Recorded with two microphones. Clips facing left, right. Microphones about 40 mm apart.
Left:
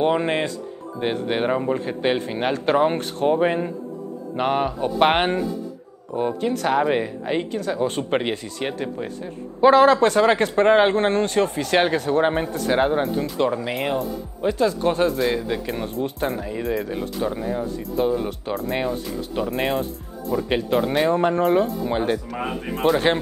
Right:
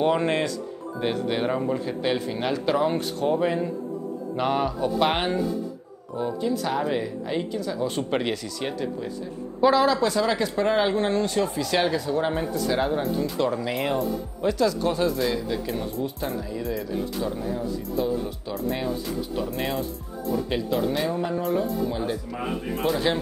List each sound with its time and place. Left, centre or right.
0.0 s speech: left
1.9 s speech: left
4.9 s a man's voice: left
8.0 s a man's voice: left
13.7 s speech: centre
14.4 s a man's voice: left
17.6 s a man's voice: left
22.4 s speech: left